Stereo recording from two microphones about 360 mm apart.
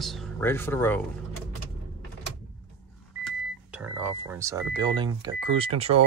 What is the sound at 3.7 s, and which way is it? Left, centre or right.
Speech, centre.